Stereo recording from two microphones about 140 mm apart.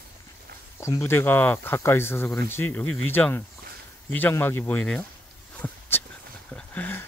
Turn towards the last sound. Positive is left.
turn(degrees=15)  # may be behind; listen again after turning